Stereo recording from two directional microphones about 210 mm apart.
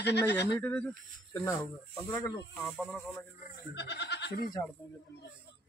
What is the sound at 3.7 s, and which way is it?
Goat, 55° left (ahead or behind).